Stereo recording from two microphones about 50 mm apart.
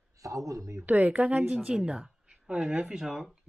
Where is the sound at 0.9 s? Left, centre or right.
Right.